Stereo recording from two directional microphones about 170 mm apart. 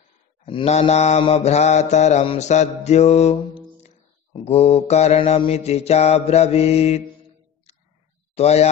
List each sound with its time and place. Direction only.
0.5 s mantra: 35° left (ahead or behind)
8.4 s mantra: 40° left (ahead or behind)